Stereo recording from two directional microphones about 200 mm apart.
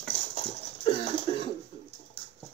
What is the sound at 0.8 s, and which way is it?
Cough, 25° left (ahead or behind).